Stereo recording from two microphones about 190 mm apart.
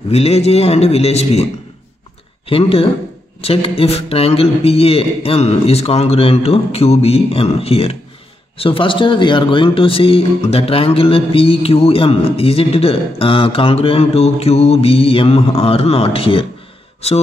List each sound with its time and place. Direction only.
0.1 s a man's voice: 30° left (ahead or behind)